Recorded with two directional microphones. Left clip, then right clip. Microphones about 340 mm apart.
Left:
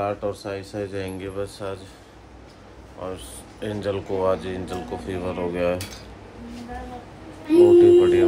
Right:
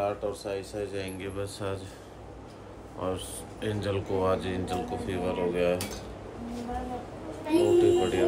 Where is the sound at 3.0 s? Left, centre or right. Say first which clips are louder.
Even; centre.